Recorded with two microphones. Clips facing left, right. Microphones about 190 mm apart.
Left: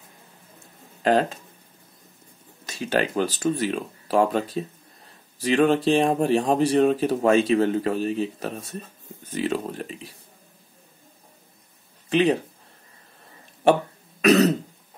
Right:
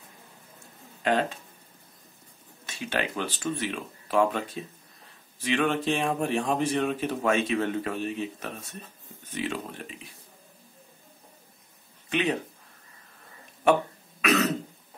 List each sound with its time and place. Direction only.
1.0 s speech: 40° left (ahead or behind)
2.6 s speech: 40° left (ahead or behind)
12.1 s speech: 35° left (ahead or behind)
14.2 s throat clearing: 40° left (ahead or behind)